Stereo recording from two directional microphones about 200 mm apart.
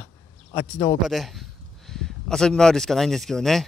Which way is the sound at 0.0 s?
15° left (ahead or behind).